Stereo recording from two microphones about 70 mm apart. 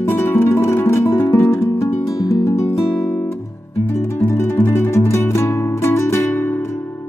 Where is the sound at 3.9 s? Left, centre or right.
Left.